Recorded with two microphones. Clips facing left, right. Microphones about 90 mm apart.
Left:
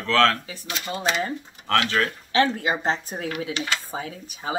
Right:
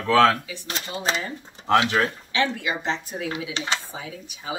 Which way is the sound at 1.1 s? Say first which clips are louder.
Left 1 dB; 35° right (ahead or behind).